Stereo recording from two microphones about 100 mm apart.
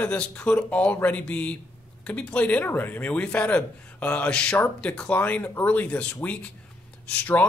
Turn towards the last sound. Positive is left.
turn(degrees=15)  # may be behind; listen again after turning